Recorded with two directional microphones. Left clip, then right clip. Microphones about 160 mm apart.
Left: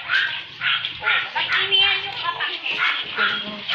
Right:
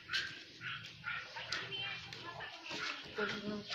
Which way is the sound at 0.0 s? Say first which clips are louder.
Left 19 dB; 50° left (ahead or behind).